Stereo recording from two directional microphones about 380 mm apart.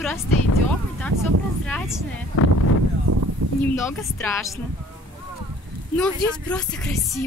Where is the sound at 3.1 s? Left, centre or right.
Right.